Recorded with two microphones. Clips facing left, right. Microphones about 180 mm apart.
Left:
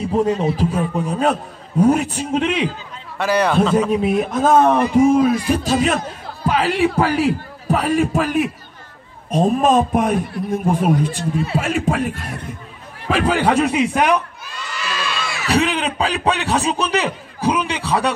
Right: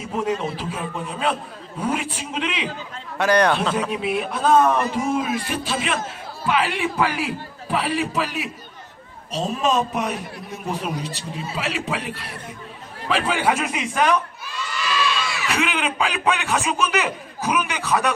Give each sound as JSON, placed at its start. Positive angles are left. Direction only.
{"t": 0.0, "sound": "a man's voice", "side_deg": 35}
{"t": 3.2, "sound": "a man's voice", "side_deg": 5}
{"t": 3.9, "sound": "a man's voice", "side_deg": 40}
{"t": 4.6, "sound": "a man's voice", "side_deg": 35}
{"t": 15.0, "sound": "a man's voice", "side_deg": 35}